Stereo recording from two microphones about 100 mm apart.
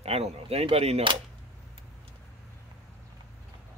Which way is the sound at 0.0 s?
90° right.